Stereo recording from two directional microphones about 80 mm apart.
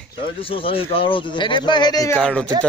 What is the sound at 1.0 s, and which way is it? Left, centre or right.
Speech, left.